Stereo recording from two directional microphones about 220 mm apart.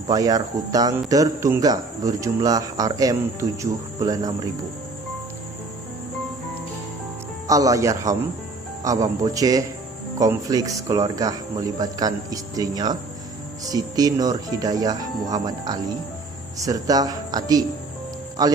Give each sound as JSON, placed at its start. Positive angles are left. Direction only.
{"t": 0.1, "sound": "speech", "side_deg": -15}
{"t": 7.4, "sound": "speech", "side_deg": -15}